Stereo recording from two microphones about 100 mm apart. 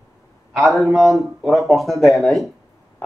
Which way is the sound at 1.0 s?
Centre (ahead or behind).